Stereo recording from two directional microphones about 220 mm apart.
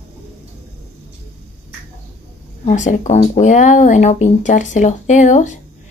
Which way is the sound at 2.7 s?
35° left (ahead or behind).